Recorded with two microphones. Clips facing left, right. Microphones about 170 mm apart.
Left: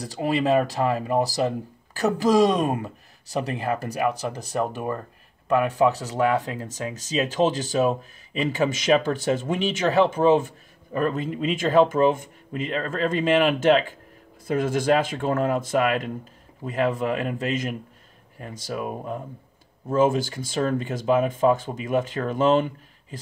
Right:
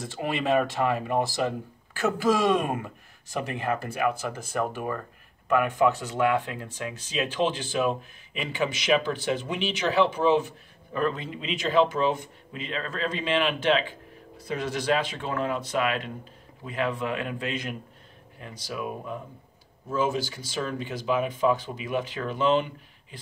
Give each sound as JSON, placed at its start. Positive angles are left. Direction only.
{"t": 0.0, "sound": "speech", "side_deg": 35}